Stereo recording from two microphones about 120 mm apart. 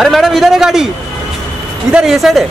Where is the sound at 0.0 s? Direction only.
Centre (ahead or behind).